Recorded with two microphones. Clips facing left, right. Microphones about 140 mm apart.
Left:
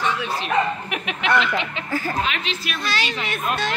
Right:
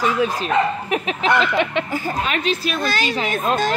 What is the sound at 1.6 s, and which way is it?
Speech, 65° right (ahead or behind).